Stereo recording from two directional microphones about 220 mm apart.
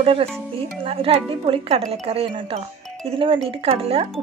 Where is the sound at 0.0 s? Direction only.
25° right (ahead or behind).